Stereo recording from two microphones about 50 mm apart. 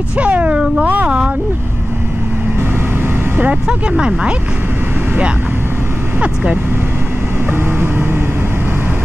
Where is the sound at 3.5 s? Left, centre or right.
Centre.